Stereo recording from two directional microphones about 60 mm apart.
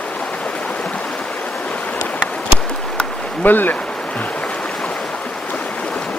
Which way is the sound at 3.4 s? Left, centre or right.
Left.